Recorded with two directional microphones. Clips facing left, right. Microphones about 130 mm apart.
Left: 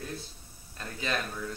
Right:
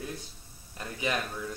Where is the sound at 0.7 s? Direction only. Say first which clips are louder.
Right 2 dB; 15° right (ahead or behind).